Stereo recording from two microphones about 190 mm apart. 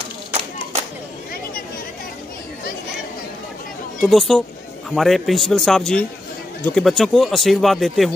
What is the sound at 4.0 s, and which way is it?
Speech, centre (ahead or behind).